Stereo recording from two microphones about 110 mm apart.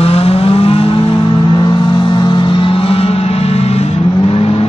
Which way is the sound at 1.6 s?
45° left (ahead or behind).